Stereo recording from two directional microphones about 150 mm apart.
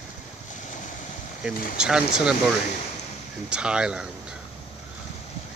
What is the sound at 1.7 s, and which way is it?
Speech, 5° right (ahead or behind).